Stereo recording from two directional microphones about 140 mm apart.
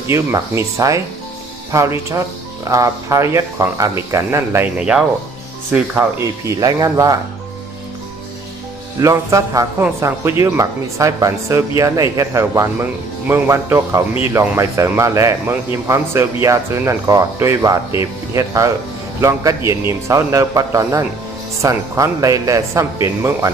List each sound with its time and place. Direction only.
0.1 s speech: 20° right (ahead or behind)
9.0 s speech: 25° right (ahead or behind)